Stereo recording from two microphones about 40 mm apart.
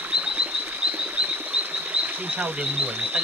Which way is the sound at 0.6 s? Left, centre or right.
Right.